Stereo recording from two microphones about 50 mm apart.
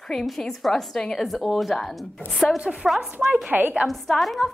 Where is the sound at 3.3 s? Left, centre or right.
Right.